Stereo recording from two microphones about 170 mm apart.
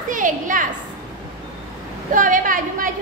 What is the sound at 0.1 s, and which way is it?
Speech, 50° right (ahead or behind).